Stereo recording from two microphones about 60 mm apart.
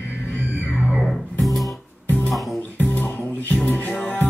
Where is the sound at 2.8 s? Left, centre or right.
Left.